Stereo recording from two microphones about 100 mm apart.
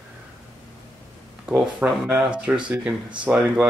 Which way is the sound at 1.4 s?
15° right (ahead or behind).